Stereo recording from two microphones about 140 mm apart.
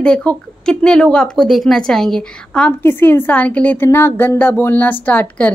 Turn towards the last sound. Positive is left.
turn(degrees=10)  # may be behind; listen again after turning